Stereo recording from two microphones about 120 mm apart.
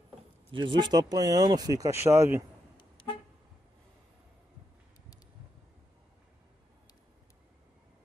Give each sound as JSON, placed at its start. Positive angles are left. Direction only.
{"t": 0.5, "sound": "speech", "side_deg": -40}